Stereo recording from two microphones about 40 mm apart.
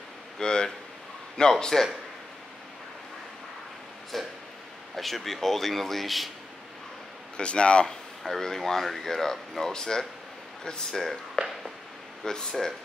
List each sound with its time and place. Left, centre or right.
0.4 s speech: centre
4.1 s speech: centre
7.3 s speech: left
8.2 s speech: centre
11.4 s a sound: centre
12.3 s speech: centre